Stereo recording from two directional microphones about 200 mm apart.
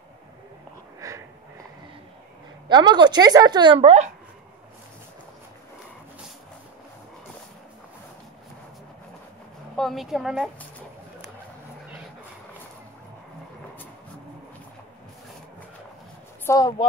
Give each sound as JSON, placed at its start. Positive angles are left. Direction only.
{"t": 1.0, "sound": "wheeze", "side_deg": -15}
{"t": 2.7, "sound": "a woman's voice", "side_deg": -20}
{"t": 9.8, "sound": "a woman's voice", "side_deg": 0}
{"t": 16.4, "sound": "speech", "side_deg": 20}